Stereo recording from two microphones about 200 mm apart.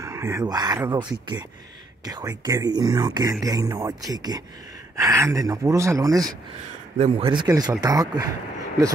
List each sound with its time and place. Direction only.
0.0 s speech: 15° right (ahead or behind)
2.0 s speech: 20° right (ahead or behind)